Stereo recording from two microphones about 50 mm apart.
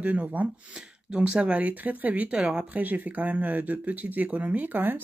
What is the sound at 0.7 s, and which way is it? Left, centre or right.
Speech, centre.